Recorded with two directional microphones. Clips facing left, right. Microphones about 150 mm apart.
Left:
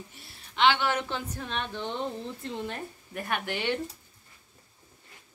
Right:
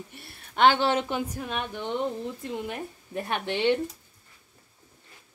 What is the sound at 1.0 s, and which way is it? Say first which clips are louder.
A woman's voice: right 4 dB; 10° right (ahead or behind).